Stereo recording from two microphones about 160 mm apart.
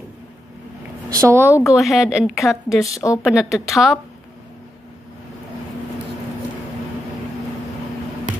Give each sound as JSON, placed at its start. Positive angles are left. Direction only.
{"t": 1.1, "sound": "speech", "side_deg": -20}
{"t": 1.8, "sound": "speech", "side_deg": 0}
{"t": 2.8, "sound": "a woman's voice", "side_deg": 20}
{"t": 3.3, "sound": "speech", "side_deg": 0}